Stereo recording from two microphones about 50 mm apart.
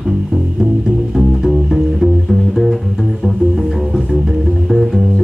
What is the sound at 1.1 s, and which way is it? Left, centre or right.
Music, centre.